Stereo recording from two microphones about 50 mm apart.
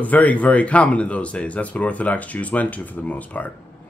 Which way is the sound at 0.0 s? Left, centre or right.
Left.